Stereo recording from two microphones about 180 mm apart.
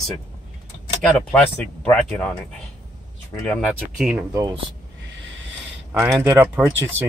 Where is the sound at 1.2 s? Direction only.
Centre (ahead or behind).